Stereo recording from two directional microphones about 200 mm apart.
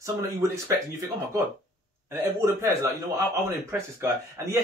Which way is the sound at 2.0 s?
15° right (ahead or behind).